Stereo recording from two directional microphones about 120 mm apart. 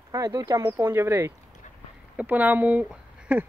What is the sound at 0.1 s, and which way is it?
Speech, 30° right (ahead or behind).